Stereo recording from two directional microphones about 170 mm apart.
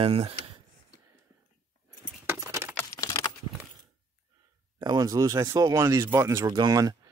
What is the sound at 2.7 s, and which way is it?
Typing, 15° left (ahead or behind).